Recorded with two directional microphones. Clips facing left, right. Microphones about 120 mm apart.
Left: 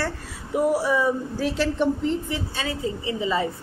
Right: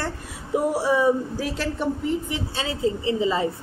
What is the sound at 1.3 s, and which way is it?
A woman's voice, 10° right (ahead or behind).